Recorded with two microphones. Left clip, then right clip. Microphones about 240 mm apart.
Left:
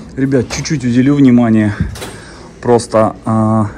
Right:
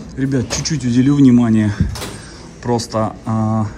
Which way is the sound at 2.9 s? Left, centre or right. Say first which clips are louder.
Left 8 dB; left.